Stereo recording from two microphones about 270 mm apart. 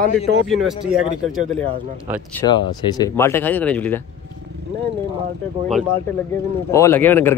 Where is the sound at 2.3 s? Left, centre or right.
Centre.